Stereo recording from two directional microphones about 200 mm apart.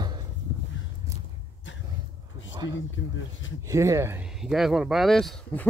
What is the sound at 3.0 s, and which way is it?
Speech, 80° left.